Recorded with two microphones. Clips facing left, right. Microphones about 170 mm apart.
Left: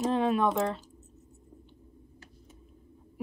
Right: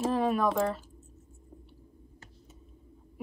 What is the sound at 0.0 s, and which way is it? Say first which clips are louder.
Speech: left 1 dB; centre (ahead or behind).